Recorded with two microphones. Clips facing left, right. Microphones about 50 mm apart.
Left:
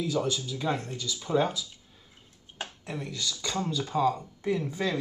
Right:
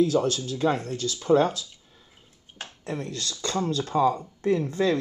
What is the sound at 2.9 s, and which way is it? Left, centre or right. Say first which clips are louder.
Speech: right 4 dB; right.